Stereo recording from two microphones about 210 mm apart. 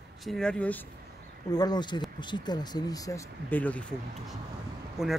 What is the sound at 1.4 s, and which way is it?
Speech, 20° left (ahead or behind).